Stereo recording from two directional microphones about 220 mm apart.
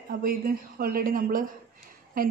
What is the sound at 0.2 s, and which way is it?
Speech, 40° right (ahead or behind).